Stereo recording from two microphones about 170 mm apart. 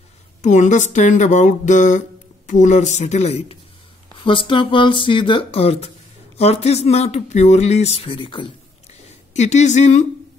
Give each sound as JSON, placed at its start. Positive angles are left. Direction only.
{"t": 0.4, "sound": "speech", "side_deg": 45}
{"t": 9.3, "sound": "speech", "side_deg": 40}